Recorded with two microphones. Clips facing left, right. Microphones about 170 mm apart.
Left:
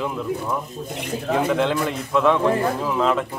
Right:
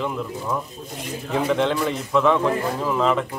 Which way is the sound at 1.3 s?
Centre (ahead or behind).